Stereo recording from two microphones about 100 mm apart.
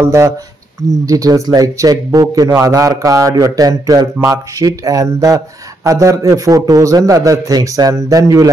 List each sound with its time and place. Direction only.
0.0 s speech: 30° right (ahead or behind)